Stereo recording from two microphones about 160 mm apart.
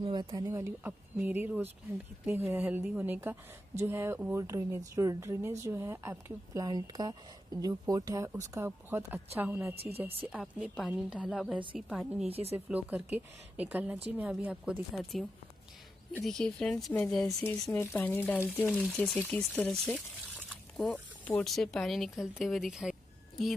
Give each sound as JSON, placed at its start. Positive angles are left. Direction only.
{"t": 0.0, "sound": "a woman's voice", "side_deg": -30}
{"t": 12.3, "sound": "speech", "side_deg": -40}
{"t": 12.5, "sound": "a woman's voice", "side_deg": -10}
{"t": 16.3, "sound": "a woman's voice", "side_deg": 5}
{"t": 20.8, "sound": "speech", "side_deg": 10}